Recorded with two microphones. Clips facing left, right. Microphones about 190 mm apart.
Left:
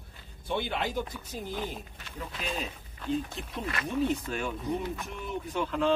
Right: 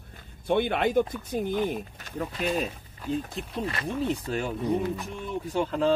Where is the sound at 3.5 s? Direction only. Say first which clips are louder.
Right 1 dB; 30° right (ahead or behind).